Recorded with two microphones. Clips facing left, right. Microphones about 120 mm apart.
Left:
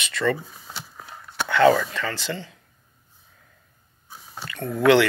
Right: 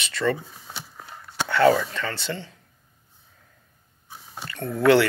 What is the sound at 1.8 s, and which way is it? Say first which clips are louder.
Speech: left 1 dB; 35° right (ahead or behind).